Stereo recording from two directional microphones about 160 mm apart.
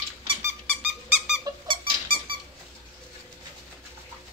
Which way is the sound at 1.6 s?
30° right (ahead or behind).